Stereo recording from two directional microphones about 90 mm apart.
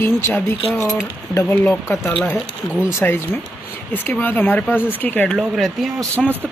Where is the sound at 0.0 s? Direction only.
25° left (ahead or behind).